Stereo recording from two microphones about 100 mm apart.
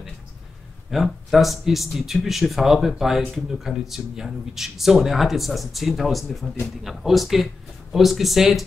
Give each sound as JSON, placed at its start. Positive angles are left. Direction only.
{"t": 0.9, "sound": "speech", "side_deg": 0}